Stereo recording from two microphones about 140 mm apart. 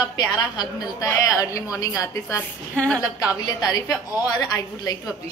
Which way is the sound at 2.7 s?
5° left (ahead or behind).